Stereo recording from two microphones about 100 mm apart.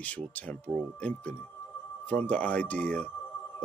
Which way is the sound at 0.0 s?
15° left (ahead or behind).